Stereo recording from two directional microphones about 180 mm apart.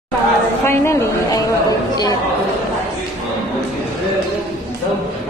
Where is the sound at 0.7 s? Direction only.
15° left (ahead or behind).